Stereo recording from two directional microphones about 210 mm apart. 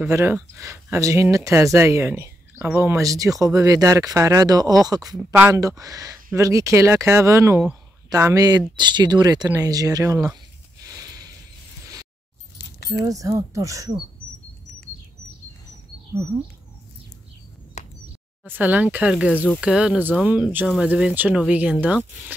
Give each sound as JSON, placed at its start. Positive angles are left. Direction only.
{"t": 0.0, "sound": "speech", "side_deg": -10}
{"t": 11.0, "sound": "a sound", "side_deg": -15}
{"t": 12.5, "sound": "keys jangling", "side_deg": 50}
{"t": 13.0, "sound": "speech", "side_deg": -15}
{"t": 17.8, "sound": "a sound", "side_deg": 35}
{"t": 18.4, "sound": "speech", "side_deg": -10}